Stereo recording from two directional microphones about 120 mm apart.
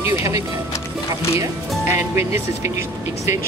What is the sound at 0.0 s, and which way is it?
Music, 25° right (ahead or behind).